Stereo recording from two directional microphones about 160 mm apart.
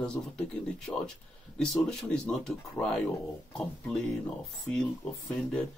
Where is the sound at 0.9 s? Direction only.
10° left (ahead or behind).